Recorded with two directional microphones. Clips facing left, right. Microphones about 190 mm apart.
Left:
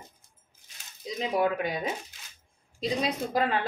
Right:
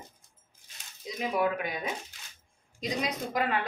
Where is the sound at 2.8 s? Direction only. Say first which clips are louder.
Left 3 dB; 30° left (ahead or behind).